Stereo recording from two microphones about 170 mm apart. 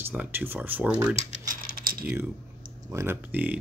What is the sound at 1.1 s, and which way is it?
Typing, 50° right (ahead or behind).